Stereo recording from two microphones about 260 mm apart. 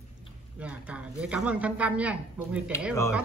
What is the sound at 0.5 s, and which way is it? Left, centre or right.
Speech, centre.